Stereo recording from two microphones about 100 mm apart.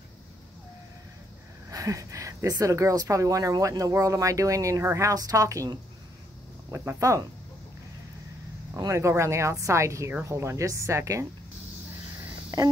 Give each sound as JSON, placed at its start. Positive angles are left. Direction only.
{"t": 1.7, "sound": "speech", "side_deg": -35}
{"t": 6.7, "sound": "speech", "side_deg": -25}
{"t": 8.7, "sound": "speech", "side_deg": -30}